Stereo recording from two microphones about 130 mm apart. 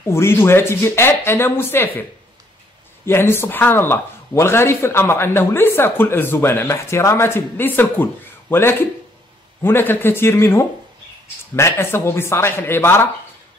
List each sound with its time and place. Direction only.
0.1 s speech: 20° left (ahead or behind)
3.1 s speech: 20° left (ahead or behind)